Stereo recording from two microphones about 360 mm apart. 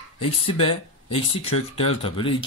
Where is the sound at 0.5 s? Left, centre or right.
Centre.